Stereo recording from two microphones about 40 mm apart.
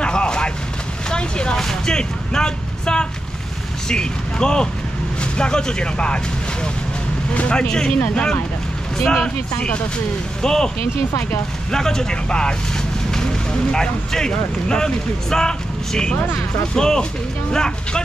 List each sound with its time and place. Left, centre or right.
0.0 s a sound: left
3.9 s speech: left
9.0 s speech: centre
10.4 s speech: centre
11.7 s speech: centre
13.1 s vehicle: centre
13.7 s speech: centre